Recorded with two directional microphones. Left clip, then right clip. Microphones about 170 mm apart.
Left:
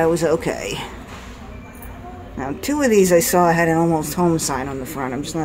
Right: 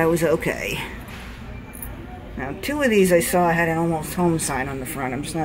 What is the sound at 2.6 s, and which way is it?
Speech, 20° left (ahead or behind).